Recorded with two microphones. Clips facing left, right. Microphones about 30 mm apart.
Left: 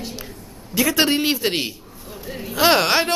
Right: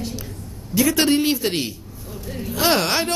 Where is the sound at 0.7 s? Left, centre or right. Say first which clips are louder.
Right 1 dB; centre.